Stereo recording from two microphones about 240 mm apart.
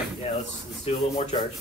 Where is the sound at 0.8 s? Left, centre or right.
Left.